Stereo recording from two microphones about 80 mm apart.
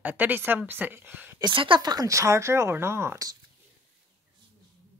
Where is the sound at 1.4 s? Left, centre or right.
Right.